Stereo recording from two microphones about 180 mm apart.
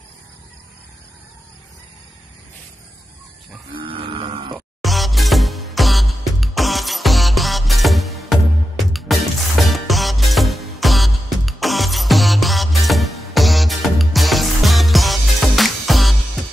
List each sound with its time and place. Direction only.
3.7 s livestock: 30° right (ahead or behind)
4.6 s music: centre (ahead or behind)